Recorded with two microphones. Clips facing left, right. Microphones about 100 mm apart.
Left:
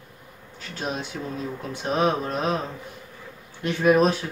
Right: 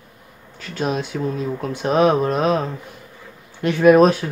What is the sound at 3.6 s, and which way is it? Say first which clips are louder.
Speech: right 7 dB; 75° right (ahead or behind).